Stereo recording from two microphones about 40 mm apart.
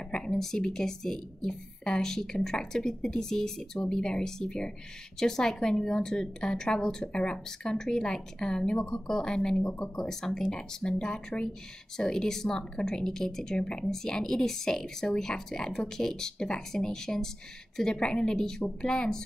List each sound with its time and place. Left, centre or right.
0.1 s a woman's voice: centre